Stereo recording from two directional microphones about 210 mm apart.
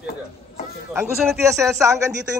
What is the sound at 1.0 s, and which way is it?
Speech, 5° right (ahead or behind).